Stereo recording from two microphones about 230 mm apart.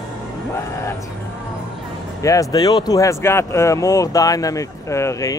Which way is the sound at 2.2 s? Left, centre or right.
Centre.